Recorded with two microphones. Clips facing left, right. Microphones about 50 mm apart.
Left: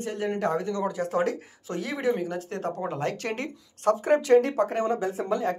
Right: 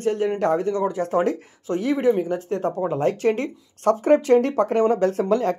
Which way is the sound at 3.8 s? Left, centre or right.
Right.